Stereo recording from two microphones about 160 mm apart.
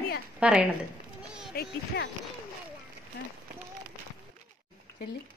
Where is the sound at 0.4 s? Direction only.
10° right (ahead or behind).